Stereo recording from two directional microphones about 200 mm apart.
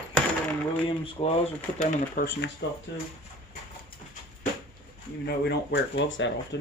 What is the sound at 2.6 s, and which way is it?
Speech, 65° left (ahead or behind).